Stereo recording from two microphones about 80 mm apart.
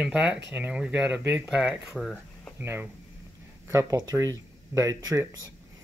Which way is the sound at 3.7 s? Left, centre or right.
Right.